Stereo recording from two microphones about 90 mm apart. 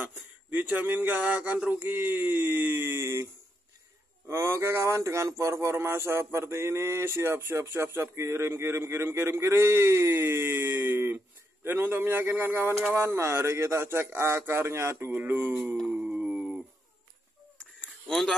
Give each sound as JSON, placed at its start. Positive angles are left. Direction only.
{"t": 0.0, "sound": "speech", "side_deg": -20}
{"t": 4.3, "sound": "speech", "side_deg": -30}
{"t": 15.9, "sound": "a sound", "side_deg": -15}
{"t": 18.0, "sound": "speech", "side_deg": 5}